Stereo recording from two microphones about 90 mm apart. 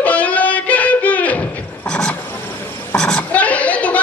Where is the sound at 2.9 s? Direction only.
10° left (ahead or behind).